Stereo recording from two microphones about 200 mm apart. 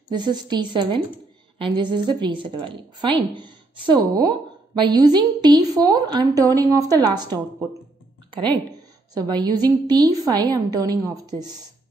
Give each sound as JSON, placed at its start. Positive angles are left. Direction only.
{"t": 0.1, "sound": "a woman's voice", "side_deg": -20}
{"t": 8.4, "sound": "a woman's voice", "side_deg": -20}